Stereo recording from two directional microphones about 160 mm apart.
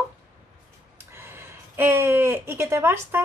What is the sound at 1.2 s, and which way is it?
Speech, 15° right (ahead or behind).